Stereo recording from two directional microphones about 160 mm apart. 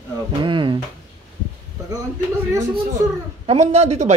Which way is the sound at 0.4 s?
30° right (ahead or behind).